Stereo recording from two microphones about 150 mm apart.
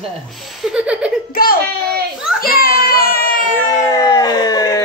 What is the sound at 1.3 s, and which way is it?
Speech, 75° left (ahead or behind).